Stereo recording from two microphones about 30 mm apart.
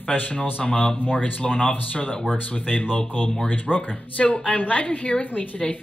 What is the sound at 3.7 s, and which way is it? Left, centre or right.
Speech, left.